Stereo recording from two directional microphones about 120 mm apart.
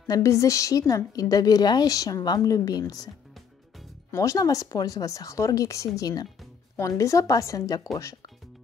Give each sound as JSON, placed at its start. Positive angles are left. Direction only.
{"t": 0.0, "sound": "a woman's voice", "side_deg": 25}
{"t": 4.1, "sound": "speech", "side_deg": 25}